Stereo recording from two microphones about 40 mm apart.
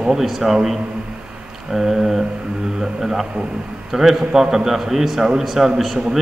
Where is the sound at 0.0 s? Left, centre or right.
Centre.